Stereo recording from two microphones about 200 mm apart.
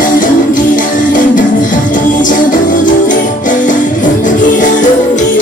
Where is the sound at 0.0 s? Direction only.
40° left (ahead or behind).